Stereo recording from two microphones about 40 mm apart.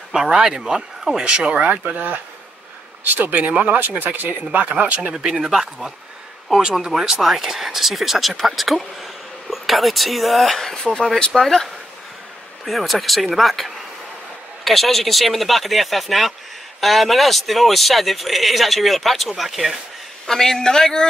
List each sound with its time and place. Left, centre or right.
0.1 s speech: centre
1.2 s speech: right
1.5 s speech: right
3.1 s speech: right
3.3 s speech: right
3.8 s speech: right
4.4 s speech: right
5.3 s speech: centre
10.8 s a man's voice: centre
11.3 s a man's voice: centre
20.2 s a man's voice: centre